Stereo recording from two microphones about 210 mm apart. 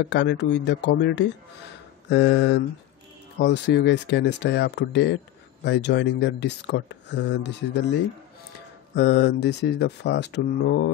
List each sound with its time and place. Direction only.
0.1 s speech: 55° left (ahead or behind)